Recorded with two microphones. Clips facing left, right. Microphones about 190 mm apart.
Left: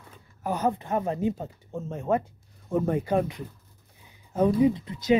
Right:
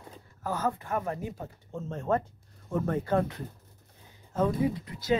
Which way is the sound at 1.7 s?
10° left (ahead or behind).